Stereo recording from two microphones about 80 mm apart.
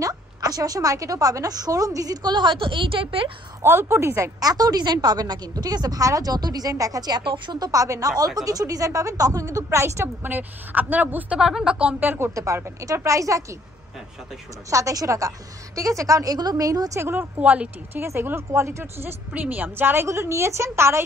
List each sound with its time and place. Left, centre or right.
0.0 s a woman's voice: right
3.6 s a woman's voice: right
4.4 s a woman's voice: right
7.7 s a woman's voice: right
10.2 s a woman's voice: right
11.3 s a woman's voice: centre; by 12.3 s right
12.4 s a woman's voice: right
14.7 s a woman's voice: right
16.9 s a woman's voice: right
18.0 s a woman's voice: right